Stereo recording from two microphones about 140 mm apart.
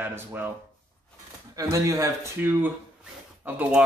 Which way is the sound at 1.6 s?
25° right (ahead or behind).